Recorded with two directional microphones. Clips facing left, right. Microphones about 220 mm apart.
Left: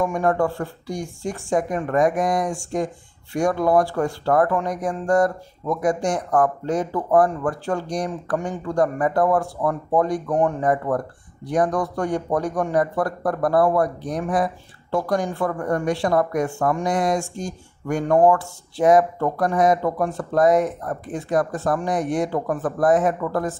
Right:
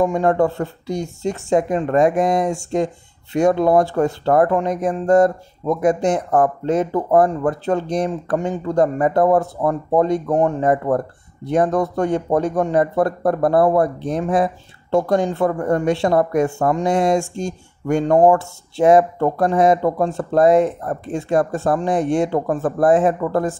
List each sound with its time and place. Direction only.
0.0 s speech: 25° right (ahead or behind)